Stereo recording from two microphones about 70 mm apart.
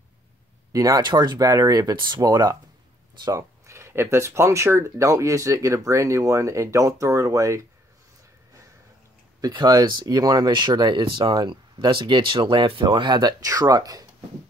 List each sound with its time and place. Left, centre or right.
0.7 s speech: right
3.3 s speech: right
9.4 s speech: right